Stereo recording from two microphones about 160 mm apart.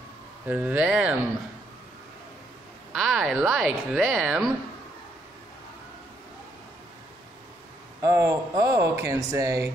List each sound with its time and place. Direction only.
0.5 s speech: 10° right (ahead or behind)
2.9 s speech: centre (ahead or behind)
8.0 s speech: 20° right (ahead or behind)